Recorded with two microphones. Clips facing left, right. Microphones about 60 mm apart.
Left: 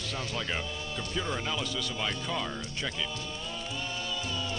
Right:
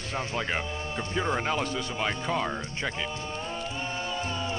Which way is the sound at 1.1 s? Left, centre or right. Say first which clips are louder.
Right 6 dB; right.